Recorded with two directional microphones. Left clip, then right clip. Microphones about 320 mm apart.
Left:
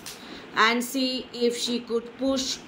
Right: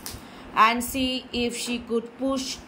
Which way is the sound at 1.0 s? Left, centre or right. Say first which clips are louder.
Right 1 dB; right.